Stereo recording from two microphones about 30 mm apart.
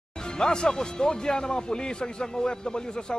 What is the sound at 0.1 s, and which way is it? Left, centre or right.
Speech, left.